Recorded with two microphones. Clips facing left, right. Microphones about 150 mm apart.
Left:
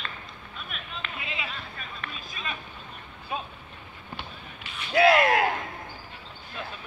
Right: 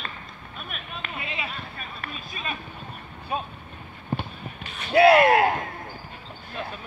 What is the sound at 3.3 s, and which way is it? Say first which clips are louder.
Vehicle: right 4 dB; 50° right (ahead or behind).